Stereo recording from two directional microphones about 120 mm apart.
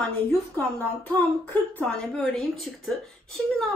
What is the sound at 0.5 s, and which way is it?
A woman's voice, 15° left (ahead or behind).